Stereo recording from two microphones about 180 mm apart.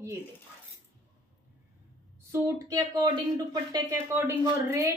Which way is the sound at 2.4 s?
20° right (ahead or behind).